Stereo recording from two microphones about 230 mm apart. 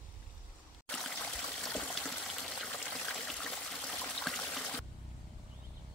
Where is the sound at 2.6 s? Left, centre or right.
Centre.